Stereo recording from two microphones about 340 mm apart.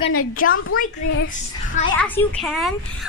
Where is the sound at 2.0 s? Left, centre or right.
Centre.